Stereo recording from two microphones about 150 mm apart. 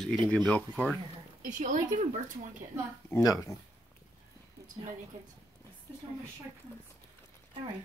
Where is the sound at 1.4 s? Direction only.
60° right (ahead or behind).